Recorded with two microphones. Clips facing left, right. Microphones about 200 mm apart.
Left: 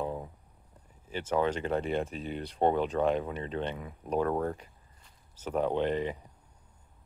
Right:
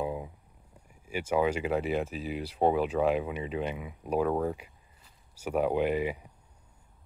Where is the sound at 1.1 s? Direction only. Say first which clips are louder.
Right 2 dB; 10° right (ahead or behind).